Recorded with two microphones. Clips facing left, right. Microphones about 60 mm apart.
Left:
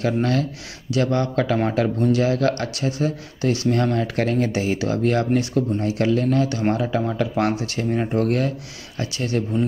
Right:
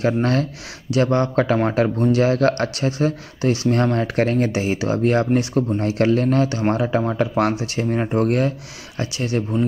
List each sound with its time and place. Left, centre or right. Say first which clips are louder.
0.0 s speech: right 2 dB; right
8.2 s speech: right 2 dB; right